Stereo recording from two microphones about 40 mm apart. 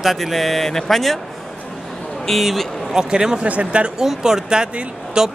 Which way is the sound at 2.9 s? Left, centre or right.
Centre.